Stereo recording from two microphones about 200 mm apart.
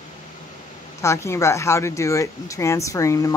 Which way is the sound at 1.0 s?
15° left (ahead or behind).